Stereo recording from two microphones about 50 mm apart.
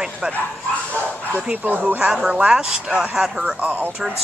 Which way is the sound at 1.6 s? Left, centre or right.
Right.